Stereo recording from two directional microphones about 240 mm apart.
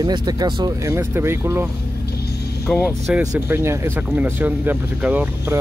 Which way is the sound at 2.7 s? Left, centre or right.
Centre.